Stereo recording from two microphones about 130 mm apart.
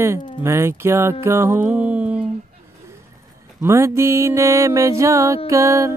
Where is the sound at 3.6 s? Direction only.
20° right (ahead or behind).